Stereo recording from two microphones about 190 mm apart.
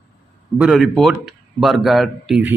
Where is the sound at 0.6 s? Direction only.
Centre (ahead or behind).